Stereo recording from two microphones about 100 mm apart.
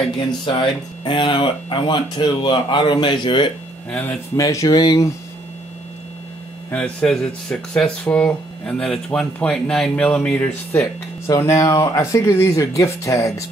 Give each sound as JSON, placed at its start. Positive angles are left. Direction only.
{"t": 0.5, "sound": "speech", "side_deg": 55}
{"t": 4.4, "sound": "speech", "side_deg": 35}
{"t": 6.7, "sound": "speech", "side_deg": 10}
{"t": 10.7, "sound": "speech", "side_deg": 25}